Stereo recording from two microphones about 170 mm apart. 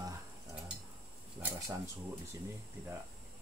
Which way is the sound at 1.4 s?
10° right (ahead or behind).